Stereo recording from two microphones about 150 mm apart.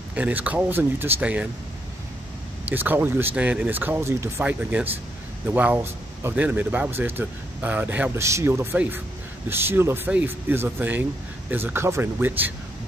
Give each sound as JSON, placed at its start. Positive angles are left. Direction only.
{"t": 0.1, "sound": "speech", "side_deg": -10}
{"t": 2.6, "sound": "speech", "side_deg": -10}